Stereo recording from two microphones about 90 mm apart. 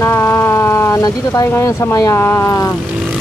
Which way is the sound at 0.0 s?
30° left (ahead or behind).